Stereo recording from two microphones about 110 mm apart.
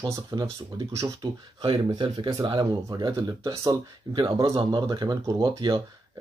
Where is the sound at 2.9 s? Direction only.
30° right (ahead or behind).